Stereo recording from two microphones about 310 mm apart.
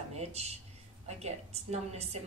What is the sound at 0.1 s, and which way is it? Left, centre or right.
A woman's voice, centre.